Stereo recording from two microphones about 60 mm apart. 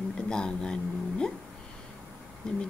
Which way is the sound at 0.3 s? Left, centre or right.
Centre.